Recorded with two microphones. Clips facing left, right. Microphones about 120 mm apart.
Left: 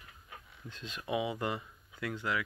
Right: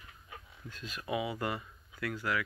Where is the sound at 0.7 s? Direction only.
20° left (ahead or behind).